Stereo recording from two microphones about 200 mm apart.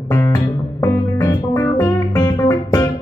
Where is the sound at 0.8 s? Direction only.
10° left (ahead or behind).